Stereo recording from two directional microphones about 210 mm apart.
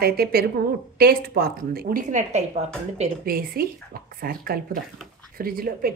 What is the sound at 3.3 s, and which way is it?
Speech, 45° right (ahead or behind).